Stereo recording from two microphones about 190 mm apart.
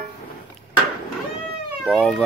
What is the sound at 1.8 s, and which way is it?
Cat, centre (ahead or behind).